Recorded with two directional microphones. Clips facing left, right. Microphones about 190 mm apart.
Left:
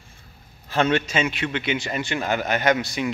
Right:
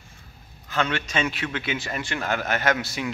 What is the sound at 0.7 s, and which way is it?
Speech, 25° left (ahead or behind).